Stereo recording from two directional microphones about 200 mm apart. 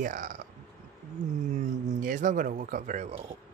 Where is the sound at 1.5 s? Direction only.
40° right (ahead or behind).